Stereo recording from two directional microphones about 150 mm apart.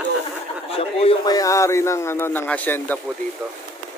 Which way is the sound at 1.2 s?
25° left (ahead or behind).